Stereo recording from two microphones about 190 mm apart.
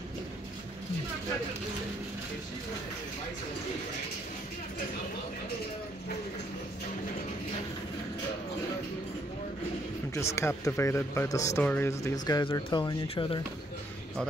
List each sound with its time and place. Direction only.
10.1 s speech: 15° left (ahead or behind)